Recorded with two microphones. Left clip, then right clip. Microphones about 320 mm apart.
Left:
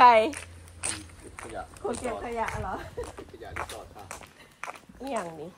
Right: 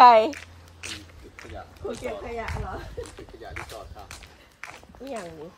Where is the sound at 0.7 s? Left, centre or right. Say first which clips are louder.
Left 1 dB; centre.